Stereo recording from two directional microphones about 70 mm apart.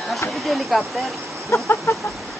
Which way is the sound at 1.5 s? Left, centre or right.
Left.